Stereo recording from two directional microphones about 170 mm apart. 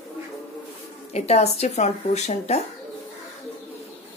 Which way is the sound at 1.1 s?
40° left (ahead or behind).